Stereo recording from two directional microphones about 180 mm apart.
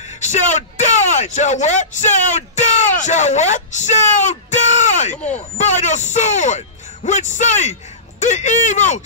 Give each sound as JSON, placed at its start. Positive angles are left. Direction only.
{"t": 0.2, "sound": "speech", "side_deg": 40}